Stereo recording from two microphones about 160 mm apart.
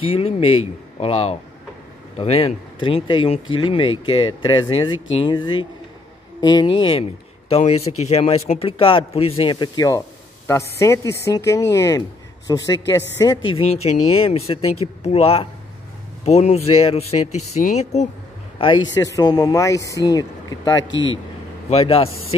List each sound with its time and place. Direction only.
0.0 s speech: 40° left (ahead or behind)
13.7 s speech: 40° left (ahead or behind)
18.6 s speech: 30° left (ahead or behind)
21.6 s speech: 40° left (ahead or behind)